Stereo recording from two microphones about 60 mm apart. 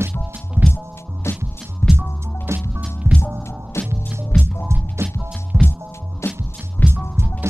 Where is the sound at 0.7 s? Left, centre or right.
Left.